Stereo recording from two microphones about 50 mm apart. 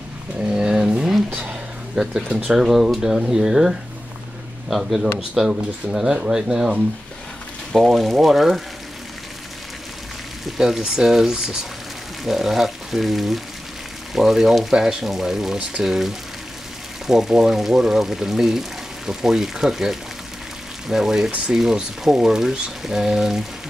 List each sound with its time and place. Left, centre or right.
0.4 s a sound: centre
2.2 s speech: right
2.5 s speech: centre
5.5 s speech: right
5.9 s speech: centre
7.7 s speech: centre
10.4 s speech: centre